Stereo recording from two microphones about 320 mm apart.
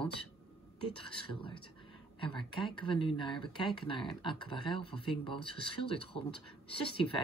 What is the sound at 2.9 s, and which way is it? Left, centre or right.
Speech, centre.